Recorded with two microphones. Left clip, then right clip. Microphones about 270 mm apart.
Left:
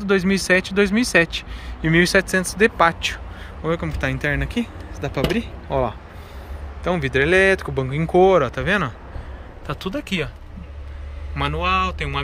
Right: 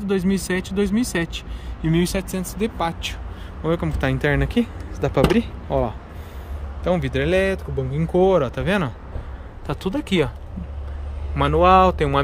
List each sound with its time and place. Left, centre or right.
0.0 s speech: centre
11.3 s speech: centre